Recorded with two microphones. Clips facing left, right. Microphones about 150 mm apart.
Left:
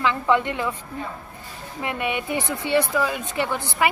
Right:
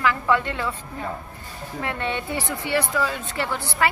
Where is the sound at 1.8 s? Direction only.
15° left (ahead or behind).